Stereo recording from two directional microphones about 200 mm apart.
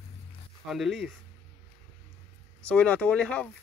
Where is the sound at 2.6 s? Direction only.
5° left (ahead or behind).